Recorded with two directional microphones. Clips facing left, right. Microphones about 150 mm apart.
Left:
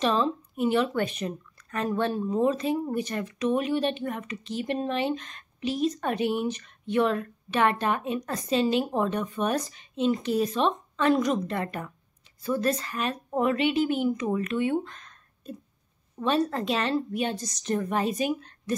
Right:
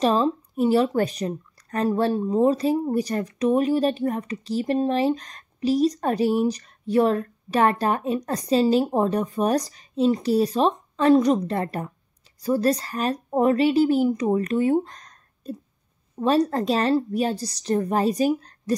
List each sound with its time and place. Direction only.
0.0 s speech: 35° right (ahead or behind)